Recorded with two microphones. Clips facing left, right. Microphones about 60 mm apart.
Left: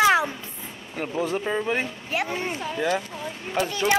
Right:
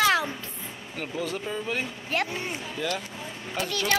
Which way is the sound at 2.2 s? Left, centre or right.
Left.